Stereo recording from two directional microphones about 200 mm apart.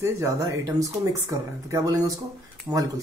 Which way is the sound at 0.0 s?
15° right (ahead or behind).